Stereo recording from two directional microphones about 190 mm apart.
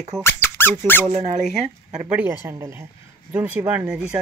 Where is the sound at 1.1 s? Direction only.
40° right (ahead or behind).